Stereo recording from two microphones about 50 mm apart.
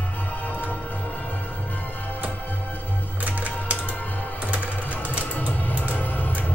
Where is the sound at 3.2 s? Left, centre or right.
Right.